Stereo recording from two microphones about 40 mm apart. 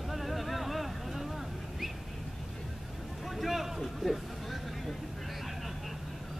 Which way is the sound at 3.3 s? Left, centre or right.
Centre.